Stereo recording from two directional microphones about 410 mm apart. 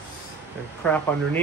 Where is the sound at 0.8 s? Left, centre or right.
Centre.